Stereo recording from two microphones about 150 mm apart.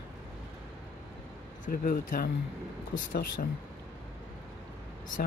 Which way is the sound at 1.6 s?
70° left (ahead or behind).